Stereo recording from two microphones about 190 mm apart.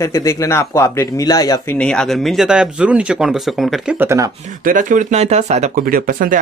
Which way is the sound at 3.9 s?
15° right (ahead or behind).